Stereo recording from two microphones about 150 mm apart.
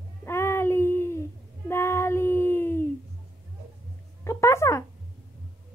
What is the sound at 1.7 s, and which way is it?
Child singing, 15° left (ahead or behind).